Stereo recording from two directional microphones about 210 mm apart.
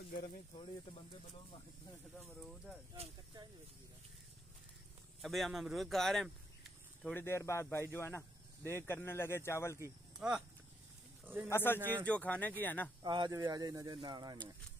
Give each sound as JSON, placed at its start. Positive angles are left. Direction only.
{"t": 0.1, "sound": "speech", "side_deg": 40}
{"t": 2.1, "sound": "speech", "side_deg": 0}
{"t": 5.2, "sound": "speech", "side_deg": 0}
{"t": 7.2, "sound": "speech", "side_deg": 10}
{"t": 9.8, "sound": "speech", "side_deg": -10}
{"t": 11.5, "sound": "speech", "side_deg": 10}
{"t": 13.0, "sound": "speech", "side_deg": -20}